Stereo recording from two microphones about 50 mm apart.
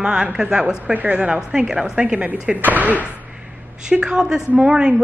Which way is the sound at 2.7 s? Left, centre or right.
Right.